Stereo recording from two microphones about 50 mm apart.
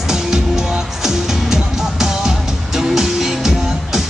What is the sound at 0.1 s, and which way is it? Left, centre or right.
Music, centre.